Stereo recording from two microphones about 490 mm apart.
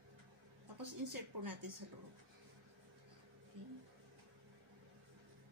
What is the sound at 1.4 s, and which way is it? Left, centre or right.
Speech, right.